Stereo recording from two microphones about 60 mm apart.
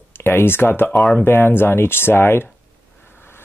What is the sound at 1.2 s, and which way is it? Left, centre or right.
Speech, left.